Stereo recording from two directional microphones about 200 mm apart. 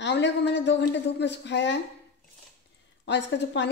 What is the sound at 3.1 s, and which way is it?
Speech, 60° left (ahead or behind).